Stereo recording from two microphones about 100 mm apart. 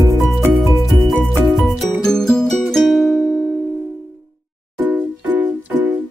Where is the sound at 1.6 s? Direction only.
5° left (ahead or behind).